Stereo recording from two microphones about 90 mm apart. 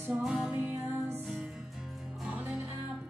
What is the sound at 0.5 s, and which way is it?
Music, 20° right (ahead or behind).